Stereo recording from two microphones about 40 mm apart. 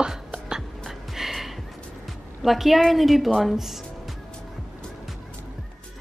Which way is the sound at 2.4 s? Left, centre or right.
Centre.